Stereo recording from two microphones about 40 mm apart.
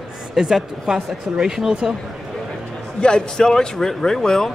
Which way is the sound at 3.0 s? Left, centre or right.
Centre.